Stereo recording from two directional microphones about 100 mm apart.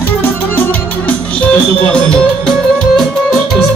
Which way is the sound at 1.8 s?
10° left (ahead or behind).